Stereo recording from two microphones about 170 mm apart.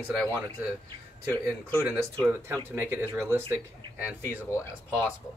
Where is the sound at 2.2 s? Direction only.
15° right (ahead or behind).